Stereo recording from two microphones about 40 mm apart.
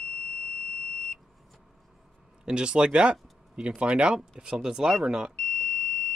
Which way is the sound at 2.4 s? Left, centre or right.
Right.